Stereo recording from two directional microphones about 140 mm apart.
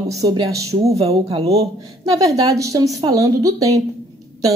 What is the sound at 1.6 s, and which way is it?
A woman's voice, 25° right (ahead or behind).